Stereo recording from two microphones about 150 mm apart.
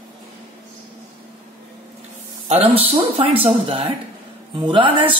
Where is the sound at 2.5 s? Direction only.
40° right (ahead or behind).